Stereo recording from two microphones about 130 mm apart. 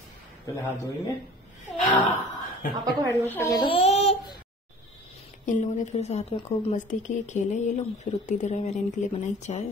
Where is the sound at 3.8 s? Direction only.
50° left (ahead or behind).